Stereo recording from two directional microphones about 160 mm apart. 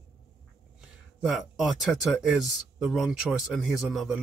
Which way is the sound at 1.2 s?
Centre (ahead or behind).